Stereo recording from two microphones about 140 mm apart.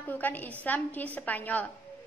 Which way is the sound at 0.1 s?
10° left (ahead or behind).